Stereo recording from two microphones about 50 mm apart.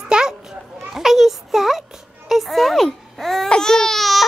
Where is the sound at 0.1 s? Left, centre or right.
Centre.